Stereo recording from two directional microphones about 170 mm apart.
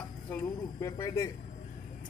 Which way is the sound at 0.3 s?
15° left (ahead or behind).